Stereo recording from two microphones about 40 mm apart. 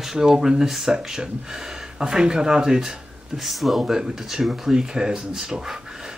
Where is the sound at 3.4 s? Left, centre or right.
Centre.